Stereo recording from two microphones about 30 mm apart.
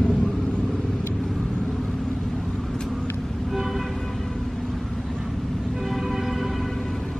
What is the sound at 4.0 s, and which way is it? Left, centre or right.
Vehicle, centre.